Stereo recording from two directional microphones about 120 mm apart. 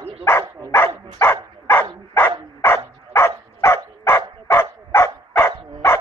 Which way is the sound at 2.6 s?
20° left (ahead or behind).